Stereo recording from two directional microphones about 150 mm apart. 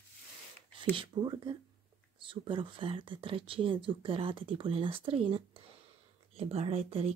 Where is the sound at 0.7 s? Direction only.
35° right (ahead or behind).